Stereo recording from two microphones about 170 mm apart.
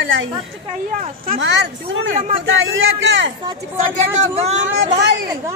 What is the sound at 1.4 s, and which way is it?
A man's voice, 90° right.